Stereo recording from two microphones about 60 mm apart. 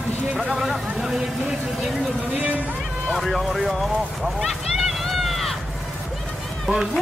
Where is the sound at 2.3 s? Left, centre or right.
Right.